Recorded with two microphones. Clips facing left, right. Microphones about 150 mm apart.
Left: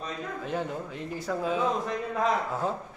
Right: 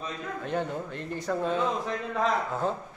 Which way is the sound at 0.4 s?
5° left (ahead or behind).